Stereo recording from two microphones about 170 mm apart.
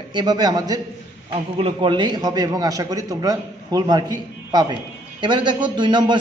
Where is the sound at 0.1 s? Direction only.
25° right (ahead or behind).